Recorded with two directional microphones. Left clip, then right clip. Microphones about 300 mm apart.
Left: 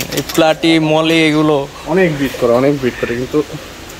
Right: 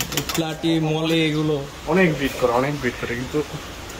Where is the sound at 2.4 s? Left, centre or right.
Left.